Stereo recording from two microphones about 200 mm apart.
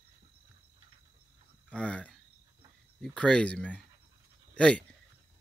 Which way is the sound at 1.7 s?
5° left (ahead or behind).